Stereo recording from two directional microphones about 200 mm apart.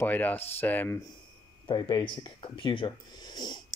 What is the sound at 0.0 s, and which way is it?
Speech, 10° left (ahead or behind).